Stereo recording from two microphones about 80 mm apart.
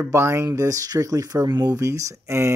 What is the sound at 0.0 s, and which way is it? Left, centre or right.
Speech, right.